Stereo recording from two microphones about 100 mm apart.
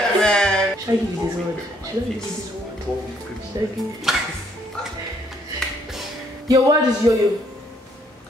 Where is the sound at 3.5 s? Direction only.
40° right (ahead or behind).